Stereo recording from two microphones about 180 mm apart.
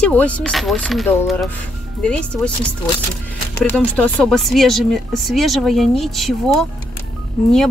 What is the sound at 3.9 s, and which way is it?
Speech, 5° left (ahead or behind).